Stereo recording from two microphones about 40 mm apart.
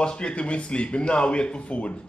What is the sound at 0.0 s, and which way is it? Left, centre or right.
Speech, left.